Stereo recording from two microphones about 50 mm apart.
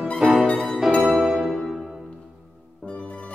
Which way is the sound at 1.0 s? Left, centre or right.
Centre.